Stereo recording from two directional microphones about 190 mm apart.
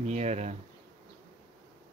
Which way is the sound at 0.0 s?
35° right (ahead or behind).